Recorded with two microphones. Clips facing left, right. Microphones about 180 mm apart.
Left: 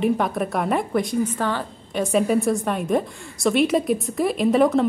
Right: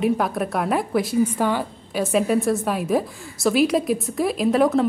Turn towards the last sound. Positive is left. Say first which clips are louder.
# left 1 dB
turn(degrees=0)  # may be behind; listen again after turning